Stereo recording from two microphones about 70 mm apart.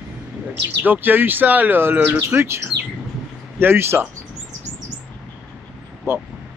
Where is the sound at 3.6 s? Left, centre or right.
Right.